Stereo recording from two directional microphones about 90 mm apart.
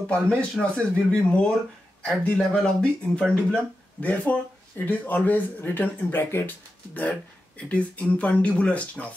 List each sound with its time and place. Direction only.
0.0 s speech: 15° left (ahead or behind)